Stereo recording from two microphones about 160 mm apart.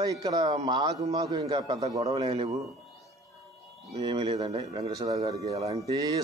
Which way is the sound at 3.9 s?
25° right (ahead or behind).